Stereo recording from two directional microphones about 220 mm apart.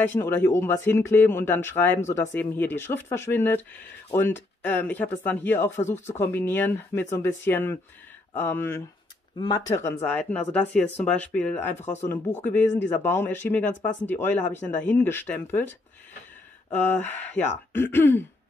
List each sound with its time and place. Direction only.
0.0 s speech: 10° left (ahead or behind)
11.8 s speech: 30° left (ahead or behind)
12.9 s speech: 10° left (ahead or behind)
16.7 s speech: 5° left (ahead or behind)